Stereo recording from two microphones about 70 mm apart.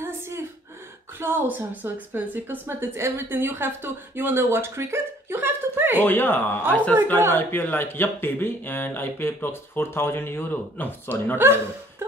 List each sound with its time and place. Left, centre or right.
0.0 s gasp: right
1.1 s a woman's voice: right
5.9 s speech: left
11.3 s a woman's voice: right